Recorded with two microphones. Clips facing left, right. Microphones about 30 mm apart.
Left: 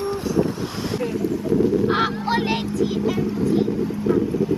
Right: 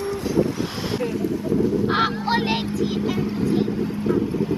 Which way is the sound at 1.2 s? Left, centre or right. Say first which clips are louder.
Left 1 dB; right.